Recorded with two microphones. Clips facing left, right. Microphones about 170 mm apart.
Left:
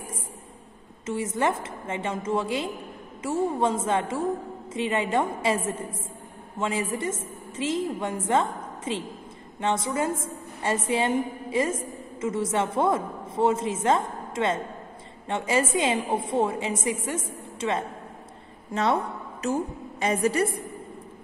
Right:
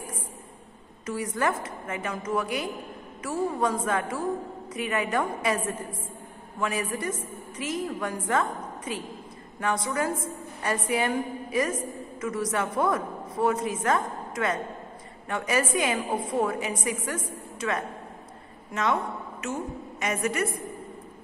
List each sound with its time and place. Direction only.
1.0 s a woman's voice: 25° left (ahead or behind)